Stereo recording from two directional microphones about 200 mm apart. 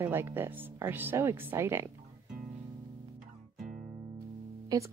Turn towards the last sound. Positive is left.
turn(degrees=-20)  # may be behind; listen again after turning